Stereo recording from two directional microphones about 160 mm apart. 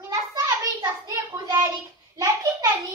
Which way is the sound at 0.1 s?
25° right (ahead or behind).